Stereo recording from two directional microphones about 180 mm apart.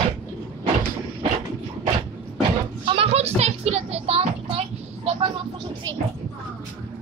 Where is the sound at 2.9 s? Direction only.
30° right (ahead or behind).